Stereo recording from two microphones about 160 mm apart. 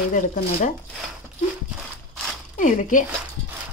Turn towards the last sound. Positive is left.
turn(degrees=55)  # may be behind; listen again after turning